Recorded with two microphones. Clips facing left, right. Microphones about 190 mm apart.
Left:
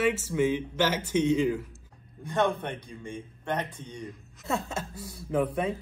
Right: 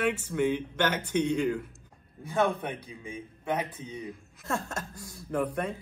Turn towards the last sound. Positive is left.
turn(degrees=5)  # may be behind; listen again after turning